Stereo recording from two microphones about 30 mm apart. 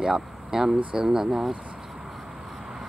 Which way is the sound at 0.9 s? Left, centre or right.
Centre.